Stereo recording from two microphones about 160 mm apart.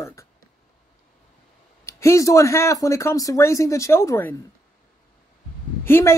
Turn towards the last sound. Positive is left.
turn(degrees=15)  # may be behind; listen again after turning